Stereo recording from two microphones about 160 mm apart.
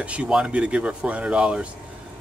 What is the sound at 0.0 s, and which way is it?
Speech, 10° right (ahead or behind).